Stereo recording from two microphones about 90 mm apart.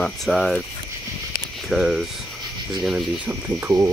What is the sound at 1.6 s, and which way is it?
Speech, 5° right (ahead or behind).